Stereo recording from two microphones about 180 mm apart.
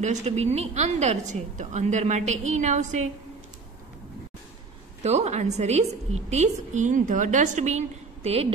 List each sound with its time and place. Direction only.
0.0 s a woman's voice: 40° right (ahead or behind)
5.0 s a woman's voice: 35° right (ahead or behind)